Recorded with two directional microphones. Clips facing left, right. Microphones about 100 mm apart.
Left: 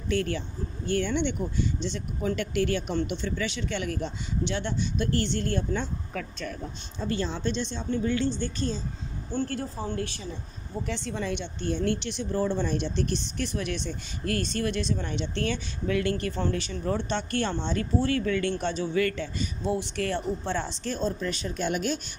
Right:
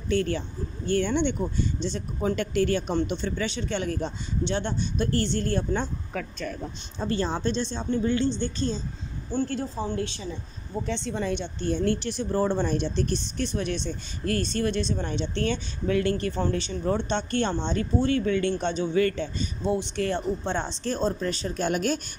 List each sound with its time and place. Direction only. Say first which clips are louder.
0.1 s speech: right 2 dB; 30° right (ahead or behind)
7.0 s speech: right 3 dB; 40° right (ahead or behind)
9.3 s speech: right 3 dB; 15° right (ahead or behind)
11.2 s speech: right 3 dB; 35° right (ahead or behind); by 20.7 s 20° right (ahead or behind)
20.8 s speech: right 5 dB; 35° right (ahead or behind)